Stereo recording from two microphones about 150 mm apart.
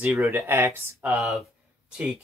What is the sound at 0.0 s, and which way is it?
Speech, 10° right (ahead or behind).